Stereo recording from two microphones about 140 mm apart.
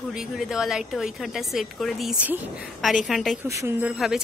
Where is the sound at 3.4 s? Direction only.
20° right (ahead or behind).